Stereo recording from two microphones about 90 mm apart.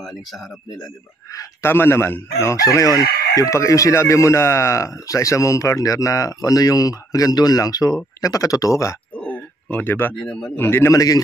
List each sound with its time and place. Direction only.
1.3 s chicken: 35° left (ahead or behind)
1.7 s chicken: 25° left (ahead or behind)
9.1 s a sound: 20° left (ahead or behind)
10.1 s speech: 5° left (ahead or behind)
10.5 s a man's voice: 25° left (ahead or behind)
10.9 s chicken: 40° left (ahead or behind)